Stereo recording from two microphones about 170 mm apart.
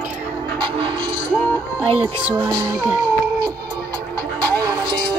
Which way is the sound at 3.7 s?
15° left (ahead or behind).